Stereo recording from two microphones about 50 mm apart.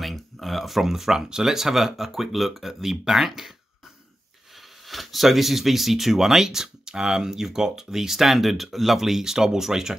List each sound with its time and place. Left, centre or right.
0.0 s speech: centre
4.8 s speech: centre